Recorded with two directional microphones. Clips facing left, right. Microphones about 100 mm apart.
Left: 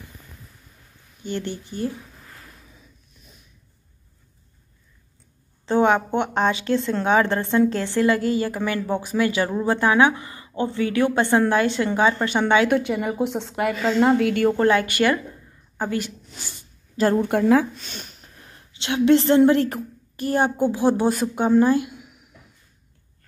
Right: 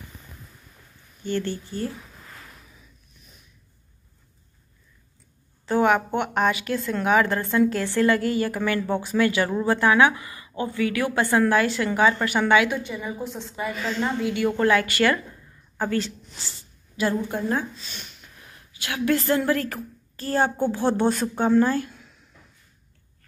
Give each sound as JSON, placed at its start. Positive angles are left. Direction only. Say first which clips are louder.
{"t": 1.2, "sound": "a woman's voice", "louder": "right 2 dB", "side_deg": 20}
{"t": 5.7, "sound": "a woman's voice", "louder": "left 2 dB", "side_deg": 25}
{"t": 12.6, "sound": "a woman's voice", "louder": "left 7 dB", "side_deg": 65}
{"t": 14.6, "sound": "a woman's voice", "louder": "left 2 dB", "side_deg": 25}
{"t": 16.9, "sound": "a woman's voice", "louder": "left 5 dB", "side_deg": 40}
{"t": 17.2, "sound": "a woman's voice", "louder": "left 8 dB", "side_deg": 75}
{"t": 17.8, "sound": "a sound", "louder": "left 3 dB", "side_deg": 40}
{"t": 18.7, "sound": "a woman's voice", "louder": "left 7 dB", "side_deg": 25}